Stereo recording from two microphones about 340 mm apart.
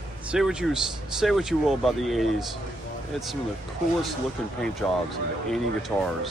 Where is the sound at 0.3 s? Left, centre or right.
Centre.